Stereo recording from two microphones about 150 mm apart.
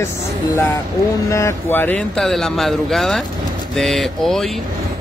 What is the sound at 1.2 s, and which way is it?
Speech, 20° left (ahead or behind).